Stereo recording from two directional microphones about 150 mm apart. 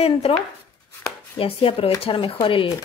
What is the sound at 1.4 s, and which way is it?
Speech, 40° left (ahead or behind).